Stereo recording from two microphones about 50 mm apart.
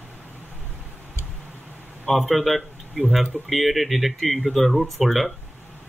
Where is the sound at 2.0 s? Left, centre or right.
Centre.